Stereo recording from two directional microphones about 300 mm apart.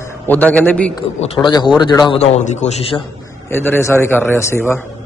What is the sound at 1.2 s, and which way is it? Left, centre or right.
A man's voice, centre.